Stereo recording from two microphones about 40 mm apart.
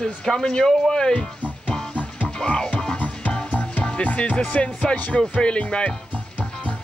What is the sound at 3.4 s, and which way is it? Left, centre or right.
Music, left.